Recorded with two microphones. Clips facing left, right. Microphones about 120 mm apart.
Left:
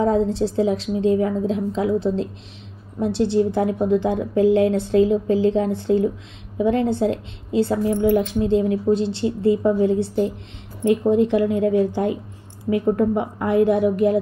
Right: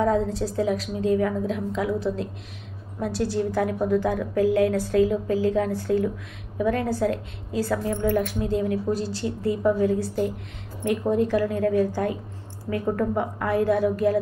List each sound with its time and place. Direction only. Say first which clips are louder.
0.0 s a woman's voice: left 4 dB; 30° left (ahead or behind)